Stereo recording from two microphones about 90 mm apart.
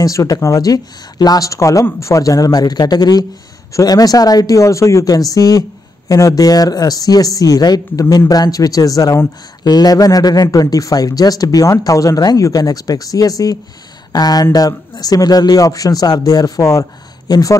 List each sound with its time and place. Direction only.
0.0 s speech: 40° left (ahead or behind)